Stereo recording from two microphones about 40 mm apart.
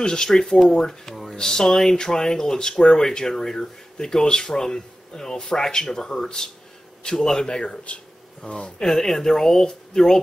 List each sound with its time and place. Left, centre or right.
0.0 s speech: centre
1.0 s a sound: centre
1.3 s speech: centre
8.8 s speech: centre